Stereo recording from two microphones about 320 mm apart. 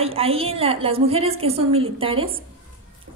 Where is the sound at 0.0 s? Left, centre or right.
Centre.